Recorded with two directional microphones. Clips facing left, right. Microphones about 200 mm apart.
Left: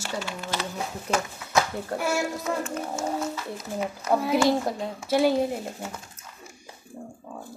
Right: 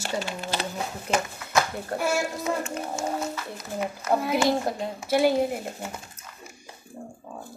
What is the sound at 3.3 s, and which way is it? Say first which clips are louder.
A woman's voice: left 1 dB; centre (ahead or behind).